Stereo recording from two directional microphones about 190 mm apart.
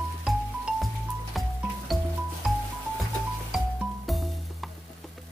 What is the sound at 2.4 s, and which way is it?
Music, 5° right (ahead or behind).